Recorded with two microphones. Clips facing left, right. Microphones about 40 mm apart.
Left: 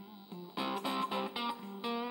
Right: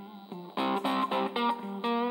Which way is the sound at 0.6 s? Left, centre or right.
Right.